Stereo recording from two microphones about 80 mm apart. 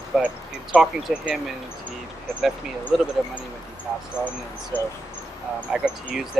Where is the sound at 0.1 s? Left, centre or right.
Centre.